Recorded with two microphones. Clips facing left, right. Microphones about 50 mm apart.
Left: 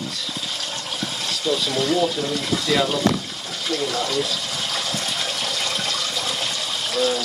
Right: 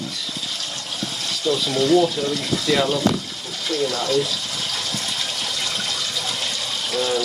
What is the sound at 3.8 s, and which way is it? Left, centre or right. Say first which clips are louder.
Speech: right 4 dB; centre.